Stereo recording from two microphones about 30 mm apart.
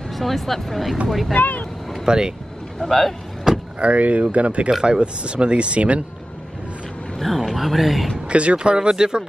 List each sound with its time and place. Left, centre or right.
0.2 s speech: centre
1.4 s speech: left
2.0 s speech: right
2.9 s speech: centre
3.8 s speech: right
4.8 s speech: right
7.2 s a sound: centre
8.3 s speech: right
8.7 s speech: right